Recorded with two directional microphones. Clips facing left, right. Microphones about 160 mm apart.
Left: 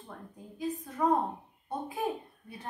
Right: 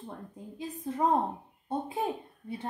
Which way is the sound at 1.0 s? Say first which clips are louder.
Even; 25° right (ahead or behind).